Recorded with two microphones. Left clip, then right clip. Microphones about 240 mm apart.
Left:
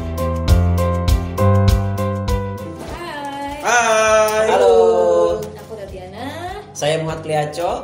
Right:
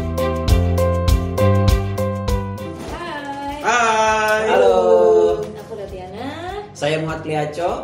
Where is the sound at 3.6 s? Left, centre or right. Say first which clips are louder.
Left 1 dB; left.